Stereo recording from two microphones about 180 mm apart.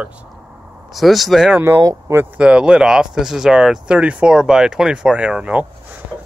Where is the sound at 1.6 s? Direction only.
15° right (ahead or behind).